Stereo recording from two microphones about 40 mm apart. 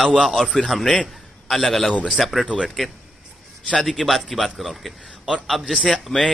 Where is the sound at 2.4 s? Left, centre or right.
Centre.